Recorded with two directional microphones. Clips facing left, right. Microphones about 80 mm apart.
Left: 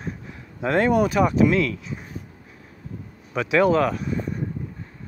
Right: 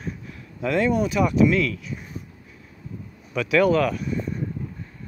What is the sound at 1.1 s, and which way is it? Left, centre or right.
Speech, left.